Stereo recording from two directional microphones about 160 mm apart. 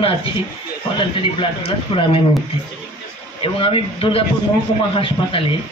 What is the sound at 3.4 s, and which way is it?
Speech, 35° left (ahead or behind).